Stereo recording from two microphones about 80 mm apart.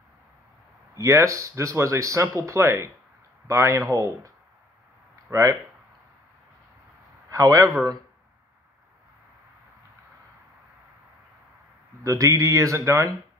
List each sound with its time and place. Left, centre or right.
0.9 s speech: right
5.3 s speech: right
7.2 s a man's voice: right
12.0 s speech: right